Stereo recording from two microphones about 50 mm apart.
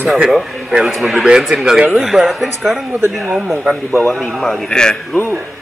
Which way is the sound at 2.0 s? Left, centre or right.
Centre.